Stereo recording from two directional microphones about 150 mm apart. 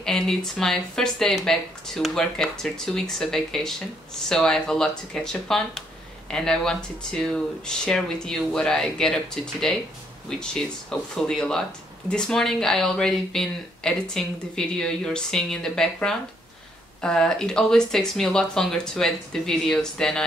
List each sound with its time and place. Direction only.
0.0 s speech: 5° left (ahead or behind)